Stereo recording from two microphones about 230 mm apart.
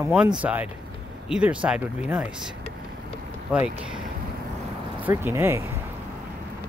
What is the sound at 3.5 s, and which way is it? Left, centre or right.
Speech, centre.